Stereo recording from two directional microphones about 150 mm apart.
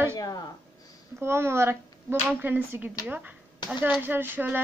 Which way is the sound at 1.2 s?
15° right (ahead or behind).